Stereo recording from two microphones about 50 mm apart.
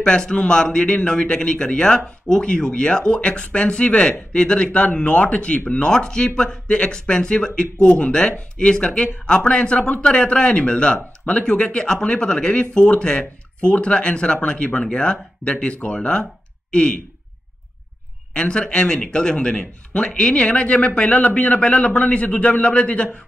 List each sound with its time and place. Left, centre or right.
0.3 s a man's voice: centre
18.3 s speech: centre